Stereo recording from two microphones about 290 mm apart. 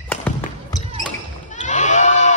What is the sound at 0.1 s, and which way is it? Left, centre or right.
Basketball bounce, centre.